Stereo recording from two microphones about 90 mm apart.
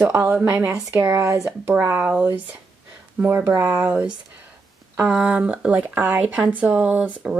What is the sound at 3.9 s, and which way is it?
Speech, 15° right (ahead or behind).